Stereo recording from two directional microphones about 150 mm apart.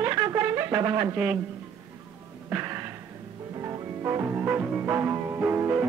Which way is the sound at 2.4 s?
15° right (ahead or behind).